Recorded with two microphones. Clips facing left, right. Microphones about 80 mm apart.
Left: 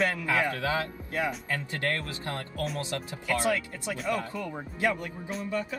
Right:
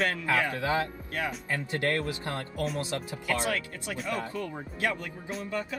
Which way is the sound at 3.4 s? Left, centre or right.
Left.